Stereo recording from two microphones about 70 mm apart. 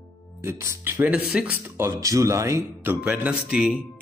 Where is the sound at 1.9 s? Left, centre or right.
Right.